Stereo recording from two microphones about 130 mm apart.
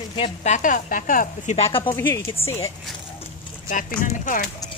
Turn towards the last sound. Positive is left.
turn(degrees=90)